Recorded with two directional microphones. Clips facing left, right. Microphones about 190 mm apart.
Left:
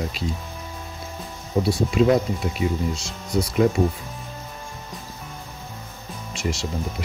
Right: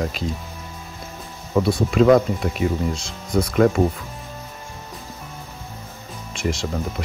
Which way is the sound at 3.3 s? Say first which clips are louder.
Right 3 dB; 65° right (ahead or behind).